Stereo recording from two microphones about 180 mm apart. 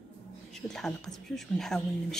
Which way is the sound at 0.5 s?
5° left (ahead or behind).